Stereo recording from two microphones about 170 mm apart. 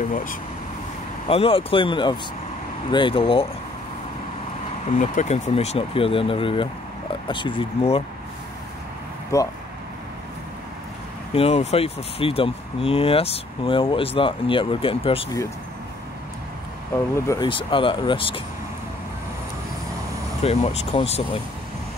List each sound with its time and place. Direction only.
0.1 s vehicle: 50° left (ahead or behind)
1.2 s speech: 35° left (ahead or behind)
4.9 s speech: 45° left (ahead or behind)
9.3 s speech: 20° left (ahead or behind)
11.3 s speech: 35° left (ahead or behind)
16.9 s speech: 15° left (ahead or behind)
17.5 s speech: 30° left (ahead or behind)
20.4 s speech: 35° left (ahead or behind)